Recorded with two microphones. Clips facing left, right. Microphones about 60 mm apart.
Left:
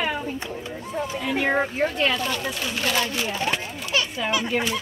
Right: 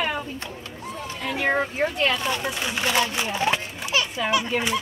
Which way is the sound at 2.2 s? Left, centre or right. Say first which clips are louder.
Right 1 dB; centre.